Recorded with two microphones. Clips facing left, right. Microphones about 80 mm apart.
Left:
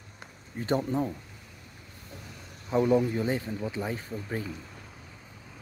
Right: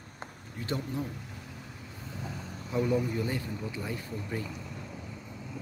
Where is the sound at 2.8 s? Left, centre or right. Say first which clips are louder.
Left 5 dB; left.